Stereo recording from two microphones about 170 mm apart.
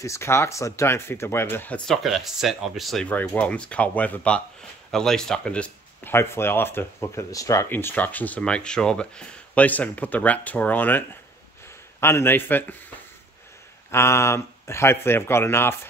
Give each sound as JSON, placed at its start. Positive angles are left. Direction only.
{"t": 0.0, "sound": "speech", "side_deg": 15}
{"t": 13.8, "sound": "speech", "side_deg": 15}